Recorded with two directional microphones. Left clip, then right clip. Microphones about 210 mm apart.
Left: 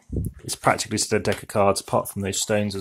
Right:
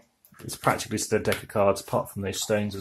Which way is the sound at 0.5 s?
35° left (ahead or behind).